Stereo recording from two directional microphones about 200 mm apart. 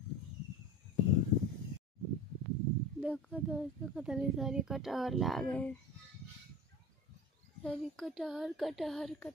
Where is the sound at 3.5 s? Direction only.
5° right (ahead or behind).